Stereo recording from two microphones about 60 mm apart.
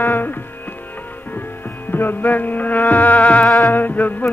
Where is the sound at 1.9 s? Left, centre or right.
Left.